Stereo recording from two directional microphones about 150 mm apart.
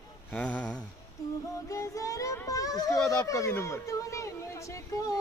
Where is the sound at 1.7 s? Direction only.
20° left (ahead or behind).